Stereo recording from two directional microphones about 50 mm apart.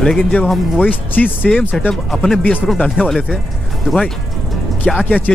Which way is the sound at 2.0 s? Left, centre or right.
Centre.